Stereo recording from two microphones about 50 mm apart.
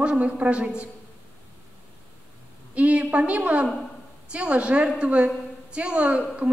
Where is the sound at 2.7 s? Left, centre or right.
Right.